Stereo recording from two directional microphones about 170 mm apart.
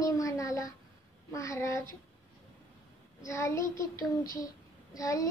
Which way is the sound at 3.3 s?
15° left (ahead or behind).